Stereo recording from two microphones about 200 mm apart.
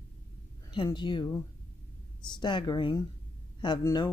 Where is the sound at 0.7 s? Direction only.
25° left (ahead or behind).